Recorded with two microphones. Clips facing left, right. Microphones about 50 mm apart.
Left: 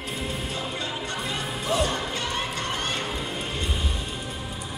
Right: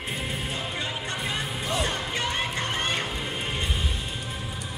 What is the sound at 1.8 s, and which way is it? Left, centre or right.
Music, right.